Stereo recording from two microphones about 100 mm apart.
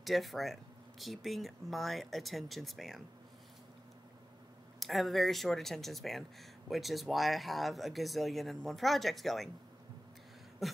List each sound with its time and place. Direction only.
0.0 s speech: centre (ahead or behind)
4.7 s speech: centre (ahead or behind)
10.6 s a sound: centre (ahead or behind)